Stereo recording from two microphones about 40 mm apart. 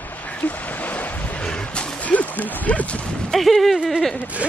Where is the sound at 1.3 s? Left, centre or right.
Left.